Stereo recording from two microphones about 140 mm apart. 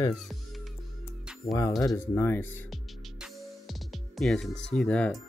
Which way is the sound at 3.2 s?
Centre (ahead or behind).